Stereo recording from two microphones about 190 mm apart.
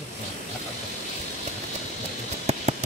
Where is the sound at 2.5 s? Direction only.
35° right (ahead or behind).